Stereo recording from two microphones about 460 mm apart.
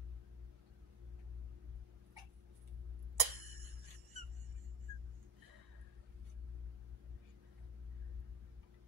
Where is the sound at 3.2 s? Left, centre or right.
Right.